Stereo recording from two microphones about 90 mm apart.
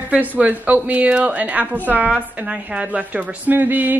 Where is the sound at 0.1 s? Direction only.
15° right (ahead or behind).